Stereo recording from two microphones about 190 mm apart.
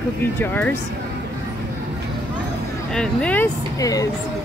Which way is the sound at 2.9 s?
5° left (ahead or behind).